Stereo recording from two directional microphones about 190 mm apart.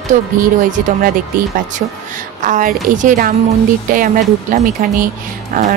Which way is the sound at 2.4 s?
45° right (ahead or behind).